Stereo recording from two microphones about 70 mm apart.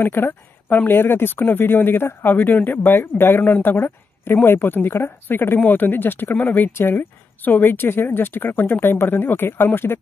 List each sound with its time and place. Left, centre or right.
0.0 s speech: left